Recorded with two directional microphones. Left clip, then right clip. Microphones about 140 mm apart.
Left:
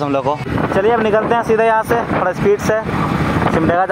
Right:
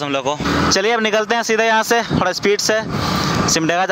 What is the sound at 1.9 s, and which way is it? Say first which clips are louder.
Speech: left 1 dB; 55° right (ahead or behind).